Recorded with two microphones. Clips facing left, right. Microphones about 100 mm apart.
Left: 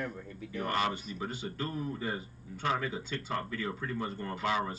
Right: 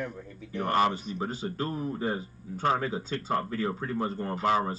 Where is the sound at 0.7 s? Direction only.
40° right (ahead or behind).